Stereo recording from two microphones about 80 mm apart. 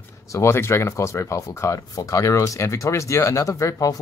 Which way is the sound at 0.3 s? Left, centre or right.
Left.